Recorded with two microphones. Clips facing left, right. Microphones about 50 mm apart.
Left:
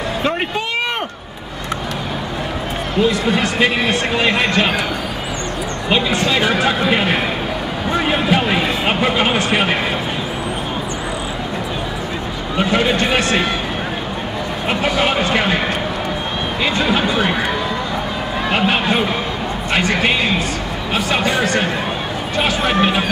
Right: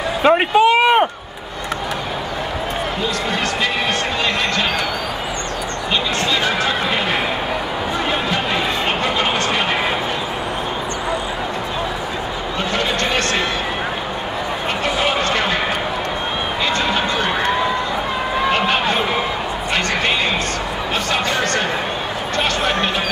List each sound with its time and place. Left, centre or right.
0.2 s a sound: right
4.2 s speech: centre
5.9 s speech: centre
8.1 s a sound: centre
12.5 s speech: centre
15.0 s speech: centre
16.6 s speech: centre
18.5 s speech: centre